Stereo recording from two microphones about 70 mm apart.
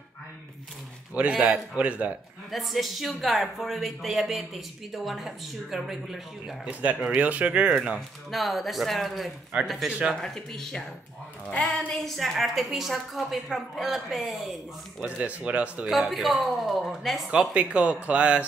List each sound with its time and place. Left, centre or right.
1.1 s speech: centre
2.5 s a man's voice: centre
6.6 s speech: right
8.3 s a man's voice: centre
9.8 s speech: centre
10.1 s speech: centre
12.0 s a man's voice: centre
15.0 s speech: centre
15.9 s a man's voice: centre
17.3 s speech: centre